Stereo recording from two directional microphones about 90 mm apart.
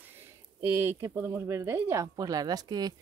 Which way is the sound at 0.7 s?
25° right (ahead or behind).